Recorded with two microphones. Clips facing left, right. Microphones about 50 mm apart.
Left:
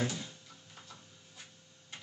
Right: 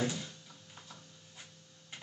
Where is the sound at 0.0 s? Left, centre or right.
Centre.